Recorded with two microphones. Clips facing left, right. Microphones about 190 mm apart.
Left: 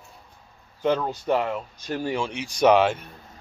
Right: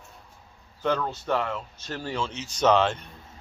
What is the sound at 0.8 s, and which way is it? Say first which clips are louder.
Speech: left 3 dB; 15° left (ahead or behind).